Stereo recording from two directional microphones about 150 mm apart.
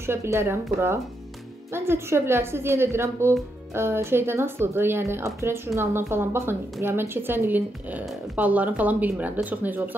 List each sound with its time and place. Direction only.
0.0 s a woman's voice: 15° right (ahead or behind)